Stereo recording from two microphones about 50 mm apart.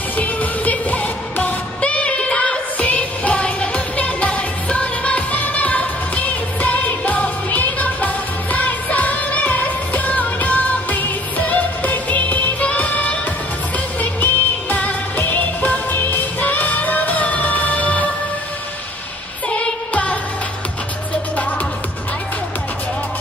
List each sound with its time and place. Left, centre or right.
0.2 s music: left
19.5 s music: left